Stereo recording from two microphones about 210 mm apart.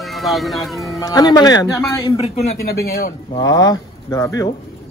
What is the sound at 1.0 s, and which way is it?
Speech, 20° left (ahead or behind).